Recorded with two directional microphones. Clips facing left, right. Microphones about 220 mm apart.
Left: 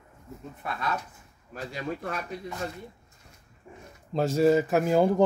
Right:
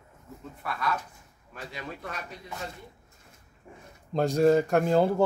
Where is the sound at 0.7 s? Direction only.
25° left (ahead or behind).